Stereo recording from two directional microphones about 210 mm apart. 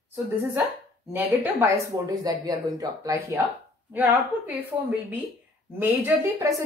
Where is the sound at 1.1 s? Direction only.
10° right (ahead or behind).